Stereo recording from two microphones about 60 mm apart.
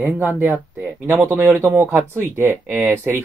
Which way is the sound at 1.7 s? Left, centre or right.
Right.